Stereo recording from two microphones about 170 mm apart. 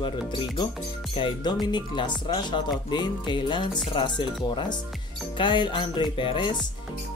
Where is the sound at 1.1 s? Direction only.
25° left (ahead or behind).